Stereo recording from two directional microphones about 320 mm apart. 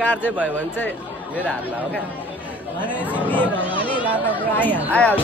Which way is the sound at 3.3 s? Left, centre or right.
Centre.